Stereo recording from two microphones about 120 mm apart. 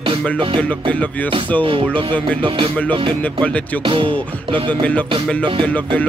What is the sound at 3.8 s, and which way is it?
Speech, 45° right (ahead or behind).